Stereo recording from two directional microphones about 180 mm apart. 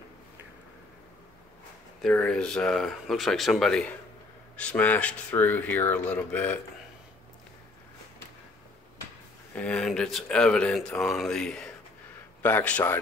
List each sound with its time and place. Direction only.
2.0 s speech: 5° left (ahead or behind)
9.6 s speech: 5° left (ahead or behind)